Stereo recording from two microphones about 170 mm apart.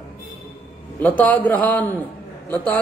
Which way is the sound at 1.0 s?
10° left (ahead or behind).